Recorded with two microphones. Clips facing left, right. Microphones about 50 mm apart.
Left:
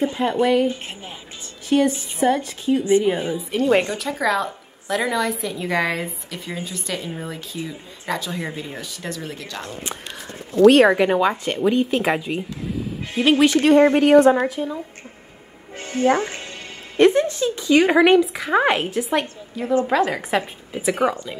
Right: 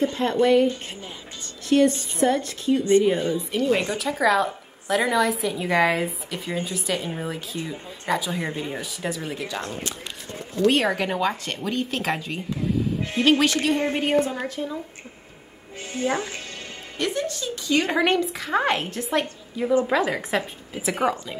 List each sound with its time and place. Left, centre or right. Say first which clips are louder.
0.0 s a woman's voice: left 1 dB; centre
3.8 s a woman's voice: even; centre
11.0 s a woman's voice: left 6 dB; centre
13.6 s speech: left 9 dB; left
13.9 s a woman's voice: left 9 dB; left
14.5 s a woman's voice: left 3 dB; centre
16.1 s a woman's voice: left 8 dB; left; by 21.4 s centre